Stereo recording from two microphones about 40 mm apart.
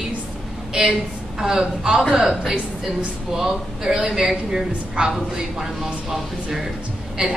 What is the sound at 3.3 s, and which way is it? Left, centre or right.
A woman's voice, centre.